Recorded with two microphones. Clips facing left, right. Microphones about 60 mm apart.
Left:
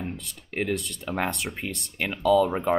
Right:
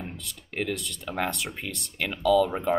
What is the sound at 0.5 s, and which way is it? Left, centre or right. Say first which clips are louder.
Speech: left 3 dB; left.